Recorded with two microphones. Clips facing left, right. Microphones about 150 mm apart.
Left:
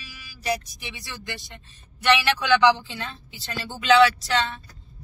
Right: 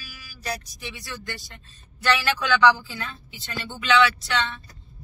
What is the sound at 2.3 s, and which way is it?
Speech, 25° left (ahead or behind).